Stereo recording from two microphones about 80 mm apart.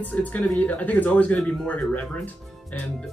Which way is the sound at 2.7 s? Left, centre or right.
Left.